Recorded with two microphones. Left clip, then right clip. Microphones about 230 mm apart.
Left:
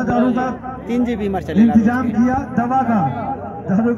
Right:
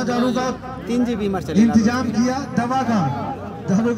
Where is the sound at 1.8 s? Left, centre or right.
Right.